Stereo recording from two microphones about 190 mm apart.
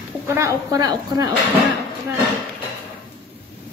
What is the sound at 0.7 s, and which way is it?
Speech, 20° right (ahead or behind).